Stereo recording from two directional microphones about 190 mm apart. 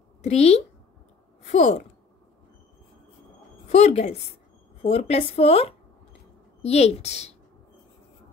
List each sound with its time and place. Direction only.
0.2 s speech: 35° left (ahead or behind)
3.6 s speech: 35° left (ahead or behind)